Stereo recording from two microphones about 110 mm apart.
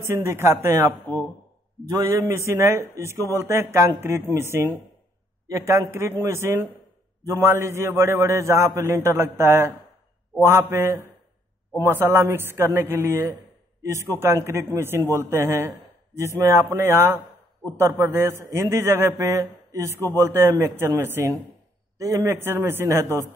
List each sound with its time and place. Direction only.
0.0 s a man's voice: 25° right (ahead or behind)